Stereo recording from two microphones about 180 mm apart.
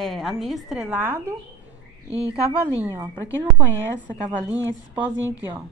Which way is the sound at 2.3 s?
10° right (ahead or behind).